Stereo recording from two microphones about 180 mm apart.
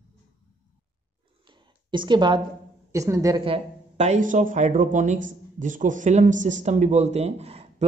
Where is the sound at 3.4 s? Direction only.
35° right (ahead or behind).